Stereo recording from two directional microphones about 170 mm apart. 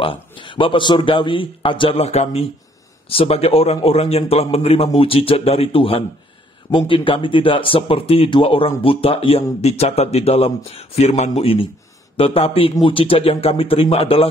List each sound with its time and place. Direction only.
0.0 s speech: 30° left (ahead or behind)